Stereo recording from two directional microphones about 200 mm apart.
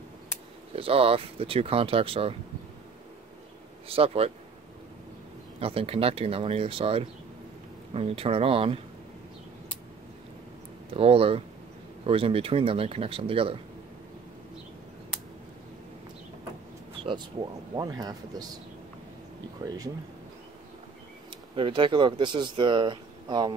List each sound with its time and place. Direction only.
0.7 s speech: 30° right (ahead or behind)
3.9 s speech: 30° right (ahead or behind)
5.6 s speech: 30° right (ahead or behind)
10.9 s speech: 30° right (ahead or behind)
17.0 s speech: 25° right (ahead or behind)
19.6 s speech: 20° right (ahead or behind)
21.5 s speech: 25° right (ahead or behind)